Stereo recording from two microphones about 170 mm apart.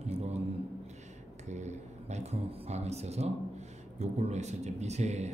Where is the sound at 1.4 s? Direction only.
45° right (ahead or behind).